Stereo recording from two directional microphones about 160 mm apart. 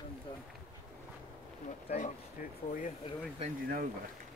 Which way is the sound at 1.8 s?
50° left (ahead or behind).